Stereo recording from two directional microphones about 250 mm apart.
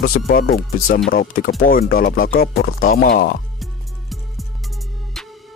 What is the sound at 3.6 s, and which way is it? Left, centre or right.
Music, centre.